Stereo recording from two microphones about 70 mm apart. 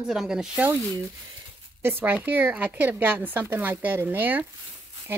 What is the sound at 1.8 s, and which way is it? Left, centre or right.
Speech, right.